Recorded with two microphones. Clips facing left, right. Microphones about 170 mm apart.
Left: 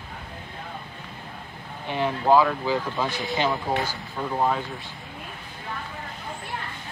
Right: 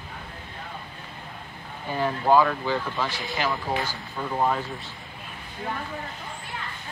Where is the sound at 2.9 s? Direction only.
20° left (ahead or behind).